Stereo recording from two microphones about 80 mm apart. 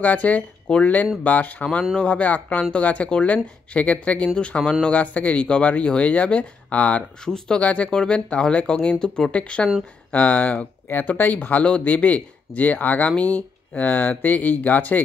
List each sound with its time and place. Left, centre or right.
0.0 s speech: centre